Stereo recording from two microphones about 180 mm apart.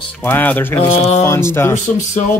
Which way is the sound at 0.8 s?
35° left (ahead or behind).